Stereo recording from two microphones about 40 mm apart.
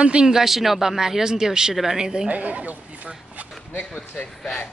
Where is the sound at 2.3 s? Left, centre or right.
Right.